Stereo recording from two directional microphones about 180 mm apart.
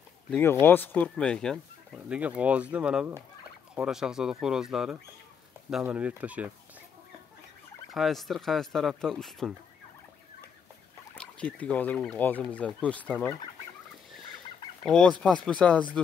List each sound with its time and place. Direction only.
0.3 s speech: 10° left (ahead or behind)
2.0 s speech: 5° right (ahead or behind)
7.9 s speech: centre (ahead or behind)
11.1 s speech: 5° left (ahead or behind)
14.9 s speech: 5° left (ahead or behind)